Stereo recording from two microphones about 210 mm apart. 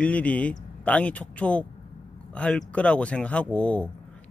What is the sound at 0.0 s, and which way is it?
Speech, 5° left (ahead or behind).